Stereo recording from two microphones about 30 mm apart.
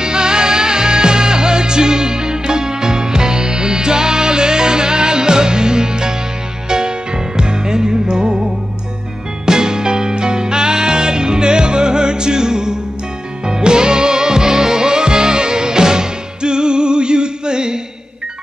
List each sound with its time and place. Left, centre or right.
0.0 s music: right
9.5 s music: right